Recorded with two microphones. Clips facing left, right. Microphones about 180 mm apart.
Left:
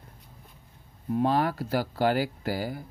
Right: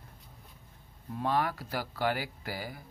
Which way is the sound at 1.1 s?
30° left (ahead or behind).